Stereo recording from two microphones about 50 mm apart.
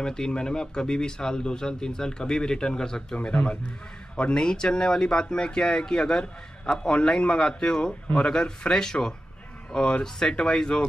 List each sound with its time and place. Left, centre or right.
0.0 s a man's voice: centre